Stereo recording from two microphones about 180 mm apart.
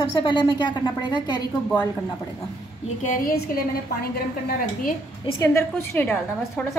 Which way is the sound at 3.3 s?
60° left (ahead or behind).